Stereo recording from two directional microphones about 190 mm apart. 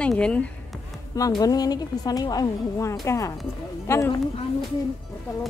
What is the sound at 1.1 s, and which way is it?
A woman's voice, 20° left (ahead or behind).